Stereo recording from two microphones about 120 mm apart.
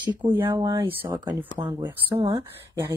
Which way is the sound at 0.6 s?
30° right (ahead or behind).